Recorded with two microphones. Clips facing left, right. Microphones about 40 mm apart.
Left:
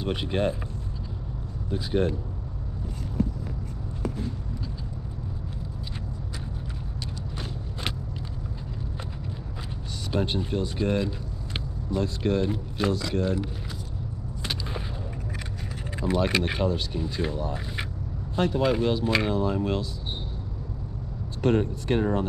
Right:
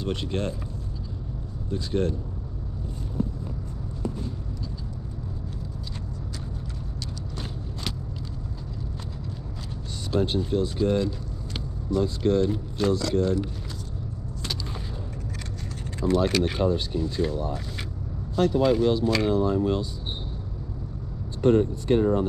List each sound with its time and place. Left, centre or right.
0.0 s speech: centre
1.7 s speech: centre
10.1 s speech: centre
12.2 s speech: centre
16.0 s speech: centre
21.5 s speech: left